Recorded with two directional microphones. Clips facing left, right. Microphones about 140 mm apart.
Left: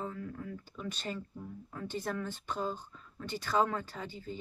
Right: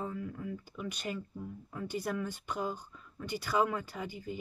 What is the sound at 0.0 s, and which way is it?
Speech, 15° right (ahead or behind).